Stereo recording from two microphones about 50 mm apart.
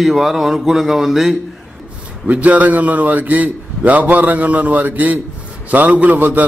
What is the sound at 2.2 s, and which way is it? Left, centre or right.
A man's voice, right.